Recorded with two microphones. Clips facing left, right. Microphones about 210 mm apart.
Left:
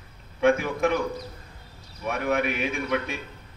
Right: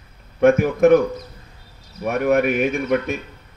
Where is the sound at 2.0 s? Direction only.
45° right (ahead or behind).